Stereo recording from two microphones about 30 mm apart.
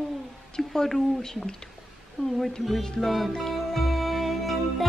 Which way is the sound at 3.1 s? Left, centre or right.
Centre.